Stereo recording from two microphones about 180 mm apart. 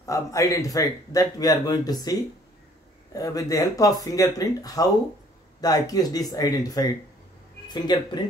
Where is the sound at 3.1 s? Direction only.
20° left (ahead or behind).